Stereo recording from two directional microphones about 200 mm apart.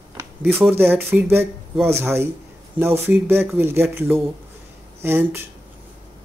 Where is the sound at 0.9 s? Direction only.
10° right (ahead or behind).